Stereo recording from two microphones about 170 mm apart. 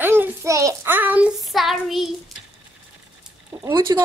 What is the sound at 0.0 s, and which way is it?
Child singing, 15° right (ahead or behind).